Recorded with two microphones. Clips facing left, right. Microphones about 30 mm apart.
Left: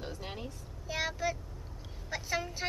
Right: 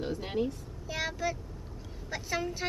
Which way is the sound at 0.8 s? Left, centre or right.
Centre.